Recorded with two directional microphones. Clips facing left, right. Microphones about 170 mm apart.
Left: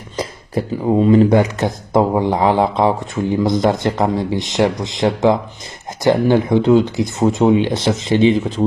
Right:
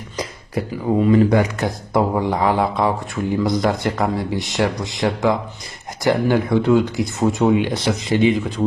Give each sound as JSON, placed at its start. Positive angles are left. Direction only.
{"t": 0.2, "sound": "speech", "side_deg": 30}